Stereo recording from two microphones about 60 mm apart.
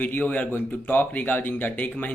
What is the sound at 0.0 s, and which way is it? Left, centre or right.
Speech, left.